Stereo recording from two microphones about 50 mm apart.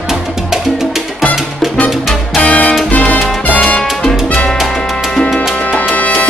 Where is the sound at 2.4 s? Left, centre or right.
Left.